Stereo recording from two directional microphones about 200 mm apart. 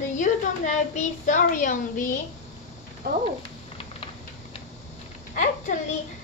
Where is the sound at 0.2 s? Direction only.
35° left (ahead or behind).